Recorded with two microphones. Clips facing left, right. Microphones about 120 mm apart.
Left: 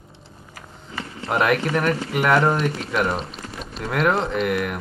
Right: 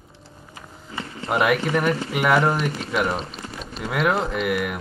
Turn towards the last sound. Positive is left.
turn(degrees=-5)  # may be behind; listen again after turning